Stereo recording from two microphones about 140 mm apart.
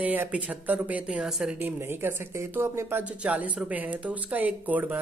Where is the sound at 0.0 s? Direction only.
10° right (ahead or behind).